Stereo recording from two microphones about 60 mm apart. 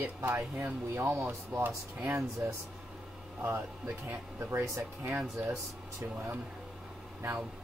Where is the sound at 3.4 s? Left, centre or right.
Right.